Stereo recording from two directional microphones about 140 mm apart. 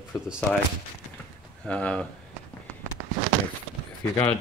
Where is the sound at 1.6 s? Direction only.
10° left (ahead or behind).